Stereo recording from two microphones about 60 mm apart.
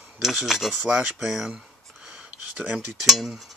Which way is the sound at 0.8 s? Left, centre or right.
Centre.